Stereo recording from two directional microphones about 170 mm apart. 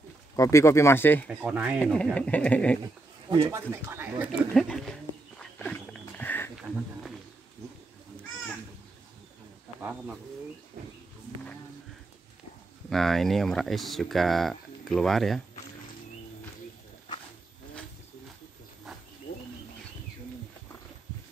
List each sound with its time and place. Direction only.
0.4 s speech: 20° left (ahead or behind)
1.3 s speech: 5° right (ahead or behind)
1.8 s speech: 5° left (ahead or behind)
3.3 s speech: 20° right (ahead or behind)
4.3 s speech: centre (ahead or behind)
5.4 s wild animals: 5° left (ahead or behind)
6.5 s a sound: centre (ahead or behind)
9.8 s speech: 5° right (ahead or behind)
12.9 s speech: centre (ahead or behind)